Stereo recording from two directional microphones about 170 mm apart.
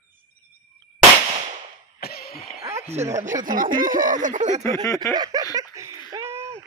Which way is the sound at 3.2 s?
50° right (ahead or behind).